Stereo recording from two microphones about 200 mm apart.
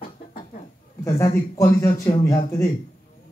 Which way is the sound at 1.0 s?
15° left (ahead or behind).